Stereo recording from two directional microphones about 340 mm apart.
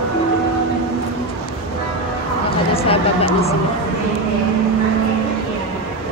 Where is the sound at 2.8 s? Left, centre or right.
Centre.